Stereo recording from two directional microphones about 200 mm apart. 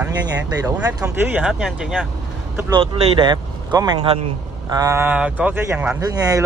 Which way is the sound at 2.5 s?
20° right (ahead or behind).